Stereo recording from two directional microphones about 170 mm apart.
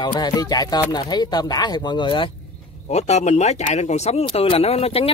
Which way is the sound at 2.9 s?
40° left (ahead or behind).